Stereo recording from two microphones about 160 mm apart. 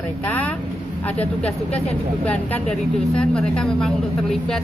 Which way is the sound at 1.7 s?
40° left (ahead or behind).